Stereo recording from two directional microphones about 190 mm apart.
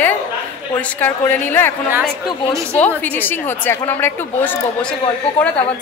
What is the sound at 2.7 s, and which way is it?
A woman's voice, 10° left (ahead or behind).